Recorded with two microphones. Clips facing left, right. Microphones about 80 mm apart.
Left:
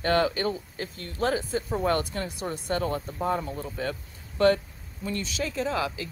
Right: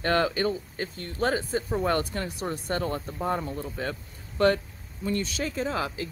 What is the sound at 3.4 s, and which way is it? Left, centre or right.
Speech, right.